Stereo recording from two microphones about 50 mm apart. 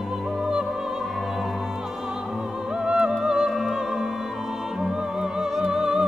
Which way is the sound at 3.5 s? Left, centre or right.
Centre.